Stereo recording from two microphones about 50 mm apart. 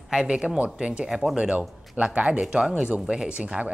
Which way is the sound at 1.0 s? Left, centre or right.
Centre.